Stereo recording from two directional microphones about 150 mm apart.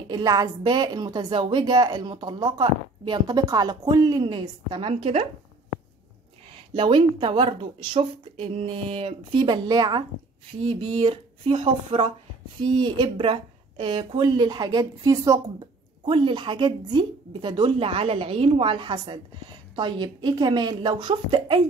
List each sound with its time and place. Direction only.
0.1 s a woman's voice: 25° right (ahead or behind); by 5.3 s 45° right (ahead or behind)
6.5 s a woman's voice: 30° right (ahead or behind)
16.1 s speech: 35° right (ahead or behind)